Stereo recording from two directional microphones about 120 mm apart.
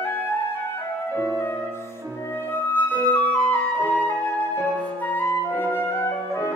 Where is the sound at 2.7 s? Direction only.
15° left (ahead or behind).